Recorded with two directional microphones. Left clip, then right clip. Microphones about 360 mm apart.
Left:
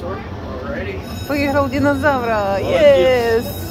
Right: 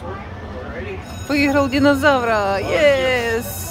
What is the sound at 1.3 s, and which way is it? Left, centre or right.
Speech, centre.